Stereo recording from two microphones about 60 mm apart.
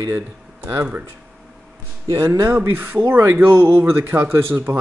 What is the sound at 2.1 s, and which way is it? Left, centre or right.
Speech, right.